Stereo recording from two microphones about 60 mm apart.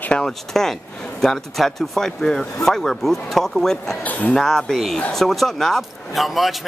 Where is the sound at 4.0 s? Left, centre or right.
Left.